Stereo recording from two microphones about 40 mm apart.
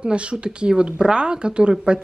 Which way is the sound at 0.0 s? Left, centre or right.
Right.